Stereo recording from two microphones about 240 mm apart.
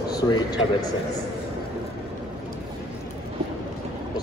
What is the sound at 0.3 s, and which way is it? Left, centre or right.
Speech, centre.